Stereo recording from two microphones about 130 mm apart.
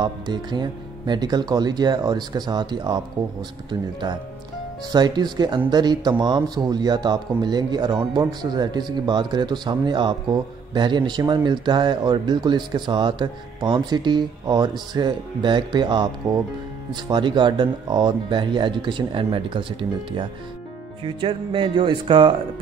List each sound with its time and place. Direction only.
0.0 s speech: 35° right (ahead or behind)
4.9 s speech: 35° right (ahead or behind)